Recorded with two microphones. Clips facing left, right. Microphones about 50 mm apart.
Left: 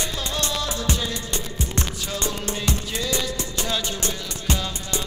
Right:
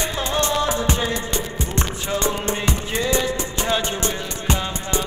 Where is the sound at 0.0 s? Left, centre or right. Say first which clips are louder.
Right 5 dB; right.